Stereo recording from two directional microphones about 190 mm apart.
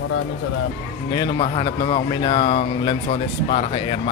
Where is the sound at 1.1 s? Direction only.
25° left (ahead or behind).